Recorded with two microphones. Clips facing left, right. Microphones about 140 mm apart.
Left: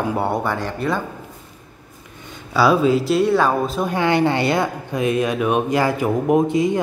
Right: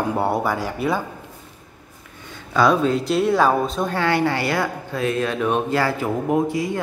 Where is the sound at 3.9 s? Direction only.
20° left (ahead or behind).